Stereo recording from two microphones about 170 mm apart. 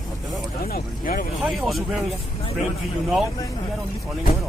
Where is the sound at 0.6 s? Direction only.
60° left (ahead or behind).